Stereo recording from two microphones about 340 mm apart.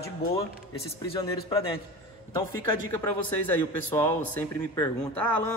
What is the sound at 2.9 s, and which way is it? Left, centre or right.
A man's voice, centre.